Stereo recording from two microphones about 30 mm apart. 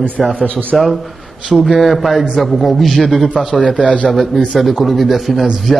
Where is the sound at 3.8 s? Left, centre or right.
Left.